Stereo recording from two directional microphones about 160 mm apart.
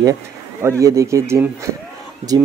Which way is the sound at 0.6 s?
20° right (ahead or behind).